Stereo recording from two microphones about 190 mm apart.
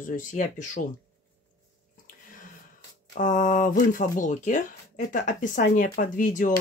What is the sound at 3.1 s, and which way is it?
Speech, 45° left (ahead or behind).